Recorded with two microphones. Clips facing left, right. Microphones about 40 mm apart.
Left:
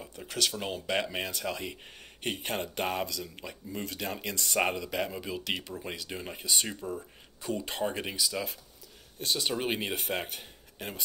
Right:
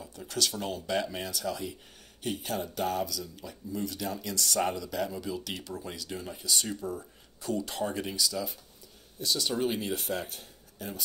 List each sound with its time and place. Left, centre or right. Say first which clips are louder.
0.2 s speech: even; left
0.9 s speech: even; left
9.2 s speech: right 1 dB; left